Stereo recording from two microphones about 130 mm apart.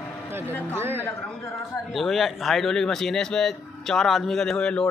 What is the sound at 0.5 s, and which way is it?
Speech, 15° left (ahead or behind).